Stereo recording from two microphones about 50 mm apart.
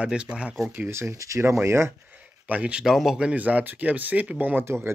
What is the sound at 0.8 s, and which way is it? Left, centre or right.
Speech, right.